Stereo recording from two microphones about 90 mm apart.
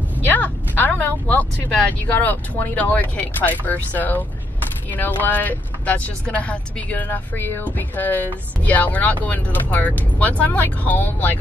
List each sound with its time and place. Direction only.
0.2 s speech: 20° left (ahead or behind)